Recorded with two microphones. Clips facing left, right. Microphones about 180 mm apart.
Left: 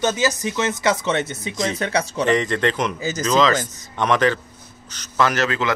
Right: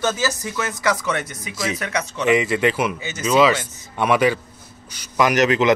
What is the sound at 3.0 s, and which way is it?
Speech, 35° left (ahead or behind).